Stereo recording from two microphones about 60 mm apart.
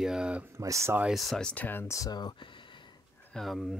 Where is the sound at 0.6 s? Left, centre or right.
Right.